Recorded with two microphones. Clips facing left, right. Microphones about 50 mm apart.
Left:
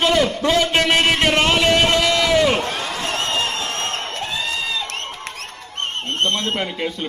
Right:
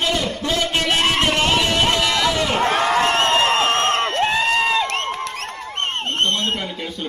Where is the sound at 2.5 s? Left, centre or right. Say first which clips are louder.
Right 7 dB; right.